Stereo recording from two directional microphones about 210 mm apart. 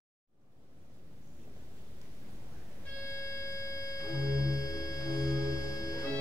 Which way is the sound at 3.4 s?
15° left (ahead or behind).